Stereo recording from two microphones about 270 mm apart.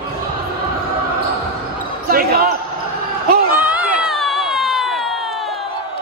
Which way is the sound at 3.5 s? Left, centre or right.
Centre.